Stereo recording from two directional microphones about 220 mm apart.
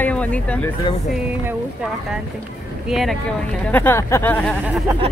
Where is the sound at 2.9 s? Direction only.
Centre (ahead or behind).